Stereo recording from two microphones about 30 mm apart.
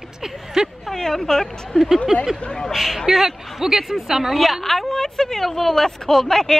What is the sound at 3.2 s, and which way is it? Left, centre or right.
Speech, centre.